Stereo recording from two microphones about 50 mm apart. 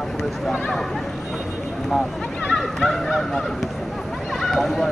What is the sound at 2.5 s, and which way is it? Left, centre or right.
Fowl, centre.